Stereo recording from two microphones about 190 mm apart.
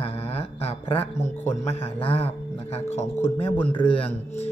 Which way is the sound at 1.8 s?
30° left (ahead or behind).